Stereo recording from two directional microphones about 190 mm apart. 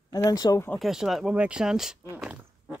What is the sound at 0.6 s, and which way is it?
Speech, centre (ahead or behind).